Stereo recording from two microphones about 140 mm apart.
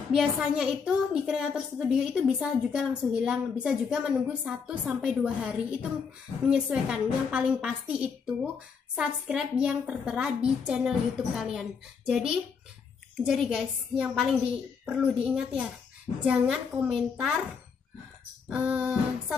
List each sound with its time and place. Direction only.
0.1 s a woman's voice: 5° right (ahead or behind)